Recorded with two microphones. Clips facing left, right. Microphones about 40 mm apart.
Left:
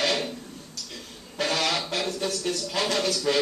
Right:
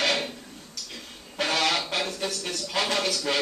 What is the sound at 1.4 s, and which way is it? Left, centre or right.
Speech, centre.